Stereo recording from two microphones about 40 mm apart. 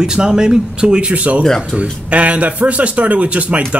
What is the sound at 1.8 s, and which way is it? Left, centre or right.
Speech, right.